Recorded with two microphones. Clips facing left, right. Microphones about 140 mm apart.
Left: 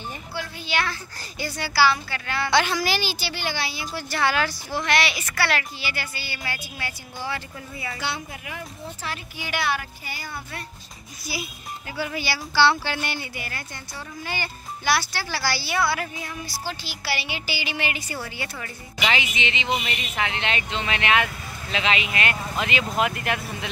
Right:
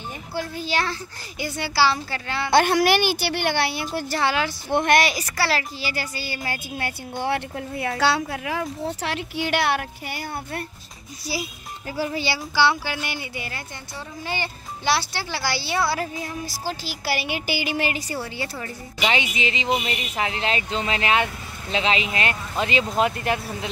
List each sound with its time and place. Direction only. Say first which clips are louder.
0.3 s speech: right 4 dB; 40° right (ahead or behind)
1.4 s a child's voice: even; 25° right (ahead or behind)
2.5 s a woman's voice: right 6 dB; 55° right (ahead or behind)
4.1 s a child's voice: left 1 dB; 25° right (ahead or behind)
4.7 s a woman's voice: right 5 dB; 50° right (ahead or behind)
5.3 s a woman's voice: right 1 dB; 30° right (ahead or behind); by 10.6 s 60° right (ahead or behind)
12.0 s a child's voice: right 3 dB; 30° right (ahead or behind)
12.5 s a child's voice: left 1 dB; 10° right (ahead or behind); by 23.7 s 30° right (ahead or behind)